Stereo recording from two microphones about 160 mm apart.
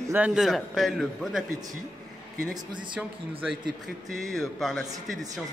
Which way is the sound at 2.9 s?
5° right (ahead or behind).